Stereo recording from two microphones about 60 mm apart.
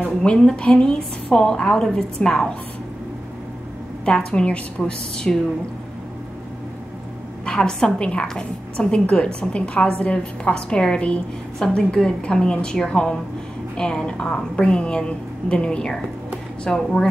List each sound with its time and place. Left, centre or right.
0.0 s a woman's voice: centre
4.0 s a woman's voice: centre
7.4 s a woman's voice: centre